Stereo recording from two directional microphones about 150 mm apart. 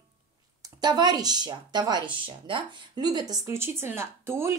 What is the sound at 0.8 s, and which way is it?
Speech, 30° right (ahead or behind).